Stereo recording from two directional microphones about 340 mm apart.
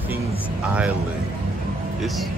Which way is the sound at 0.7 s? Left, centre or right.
Centre.